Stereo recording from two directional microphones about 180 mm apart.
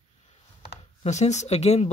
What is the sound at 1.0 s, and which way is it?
Speech, 40° left (ahead or behind).